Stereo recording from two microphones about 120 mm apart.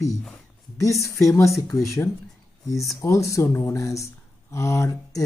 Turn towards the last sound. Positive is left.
turn(degrees=25)  # may be behind; listen again after turning